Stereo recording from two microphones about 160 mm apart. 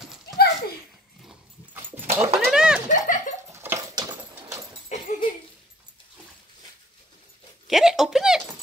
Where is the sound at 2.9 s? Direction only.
50° left (ahead or behind).